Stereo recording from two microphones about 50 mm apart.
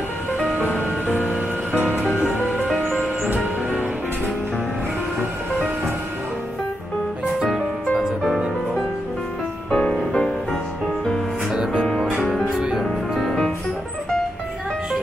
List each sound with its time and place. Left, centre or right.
1.0 s music: right
9.7 s music: centre
11.5 s music: centre
12.8 s music: centre